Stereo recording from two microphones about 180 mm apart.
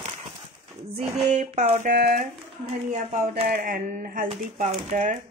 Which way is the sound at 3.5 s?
50° right (ahead or behind).